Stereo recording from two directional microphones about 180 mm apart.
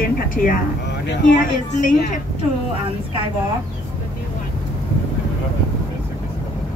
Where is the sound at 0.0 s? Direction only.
50° left (ahead or behind).